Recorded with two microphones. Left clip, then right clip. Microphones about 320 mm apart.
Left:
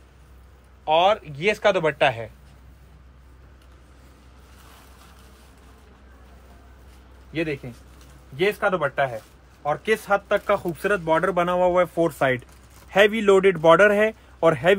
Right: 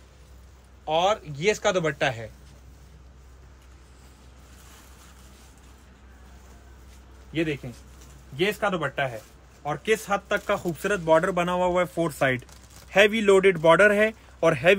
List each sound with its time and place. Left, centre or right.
0.8 s a man's voice: left
7.7 s a man's voice: centre